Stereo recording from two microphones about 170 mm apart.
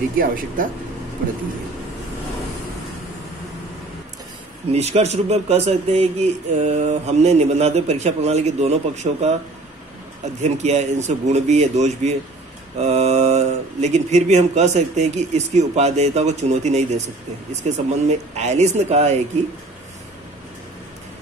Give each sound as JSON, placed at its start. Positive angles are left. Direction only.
{"t": 0.6, "sound": "speech", "side_deg": -50}
{"t": 4.7, "sound": "speech", "side_deg": -40}
{"t": 10.4, "sound": "speech", "side_deg": -40}